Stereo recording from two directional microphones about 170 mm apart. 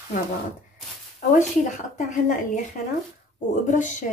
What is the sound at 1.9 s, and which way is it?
Speech, 50° left (ahead or behind).